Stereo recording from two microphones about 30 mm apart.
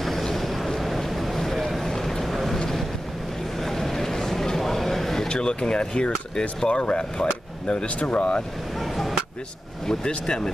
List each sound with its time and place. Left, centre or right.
0.0 s vehicle: centre
1.9 s boat: centre
2.2 s vehicle: centre
3.6 s vehicle: centre
4.6 s a sound: centre
5.3 s speech: left
8.7 s a sound: centre
10.0 s speech: left